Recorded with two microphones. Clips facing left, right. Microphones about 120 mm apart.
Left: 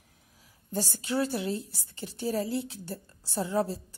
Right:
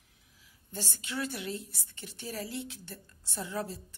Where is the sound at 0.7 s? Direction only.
35° left (ahead or behind).